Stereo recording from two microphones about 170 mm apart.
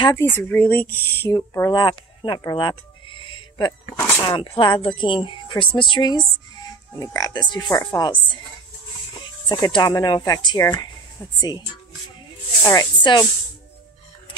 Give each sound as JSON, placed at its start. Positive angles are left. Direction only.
{"t": 0.0, "sound": "speech", "side_deg": 15}
{"t": 12.6, "sound": "speech", "side_deg": 25}